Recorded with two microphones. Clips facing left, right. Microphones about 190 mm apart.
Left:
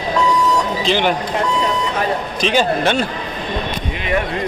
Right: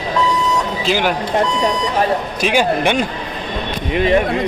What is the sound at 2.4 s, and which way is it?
Speech, 15° right (ahead or behind).